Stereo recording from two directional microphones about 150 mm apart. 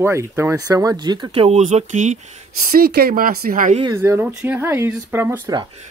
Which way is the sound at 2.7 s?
85° right.